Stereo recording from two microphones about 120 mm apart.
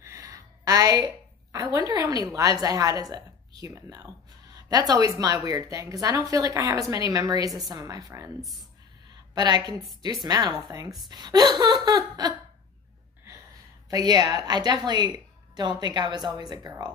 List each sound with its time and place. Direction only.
0.0 s a sound: 30° right (ahead or behind)
1.5 s a woman's voice: 25° right (ahead or behind)
8.4 s speech: centre (ahead or behind)
9.3 s a woman's voice: 35° right (ahead or behind)
13.8 s a woman's voice: 30° right (ahead or behind)